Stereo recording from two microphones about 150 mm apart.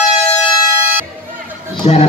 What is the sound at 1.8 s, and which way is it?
Speech, 45° left (ahead or behind).